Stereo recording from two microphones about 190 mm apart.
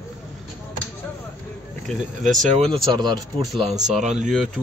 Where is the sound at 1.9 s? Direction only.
Centre (ahead or behind).